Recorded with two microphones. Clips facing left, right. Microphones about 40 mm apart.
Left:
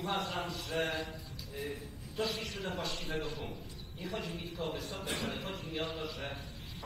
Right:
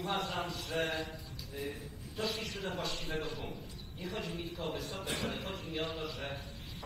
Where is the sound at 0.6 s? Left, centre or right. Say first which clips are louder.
Left 1 dB; right.